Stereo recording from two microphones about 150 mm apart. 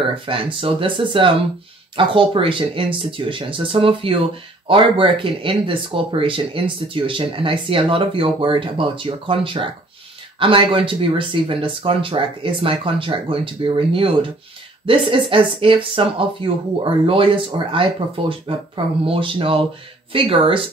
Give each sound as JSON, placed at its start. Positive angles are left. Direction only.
{"t": 0.0, "sound": "speech", "side_deg": -35}